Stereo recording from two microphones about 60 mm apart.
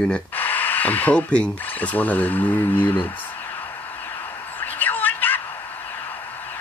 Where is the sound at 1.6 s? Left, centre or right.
Left.